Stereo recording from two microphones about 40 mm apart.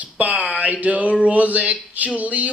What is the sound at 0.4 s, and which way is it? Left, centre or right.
Speech, right.